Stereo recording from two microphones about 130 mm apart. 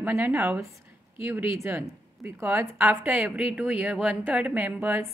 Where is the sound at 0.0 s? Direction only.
15° right (ahead or behind).